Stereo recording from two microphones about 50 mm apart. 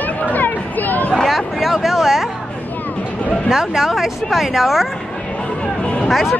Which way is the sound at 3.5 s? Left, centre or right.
Centre.